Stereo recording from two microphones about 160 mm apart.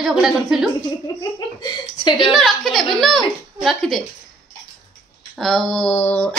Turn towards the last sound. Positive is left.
turn(degrees=10)  # may be behind; listen again after turning